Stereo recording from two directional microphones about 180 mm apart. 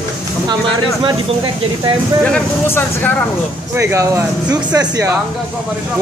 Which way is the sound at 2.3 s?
10° left (ahead or behind).